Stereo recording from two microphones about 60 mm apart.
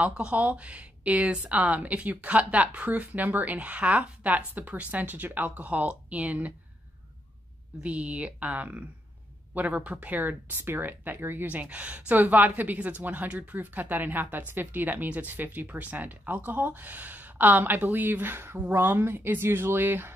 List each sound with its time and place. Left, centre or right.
0.0 s speech: right
7.8 s speech: right
11.5 s speech: right